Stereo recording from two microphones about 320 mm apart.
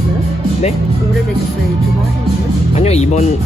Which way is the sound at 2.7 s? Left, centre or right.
Centre.